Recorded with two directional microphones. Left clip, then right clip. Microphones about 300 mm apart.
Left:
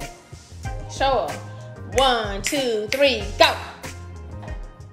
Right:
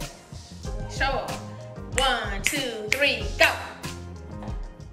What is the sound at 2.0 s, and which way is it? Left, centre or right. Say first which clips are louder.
A woman's voice: left 4 dB; centre.